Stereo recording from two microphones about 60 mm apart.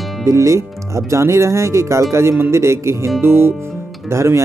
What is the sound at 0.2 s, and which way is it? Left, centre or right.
Speech, right.